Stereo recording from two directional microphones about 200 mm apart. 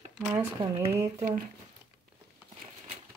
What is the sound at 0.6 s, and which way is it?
Speech, 20° right (ahead or behind).